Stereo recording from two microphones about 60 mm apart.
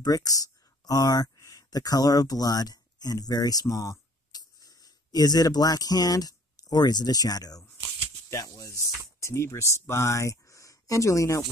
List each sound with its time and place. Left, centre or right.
0.0 s speech: left
4.3 s a sound: left
7.1 s speech: left
8.3 s speech: left